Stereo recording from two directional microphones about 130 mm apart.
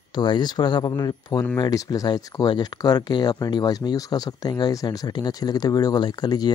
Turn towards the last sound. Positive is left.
turn(degrees=30)  # may be behind; listen again after turning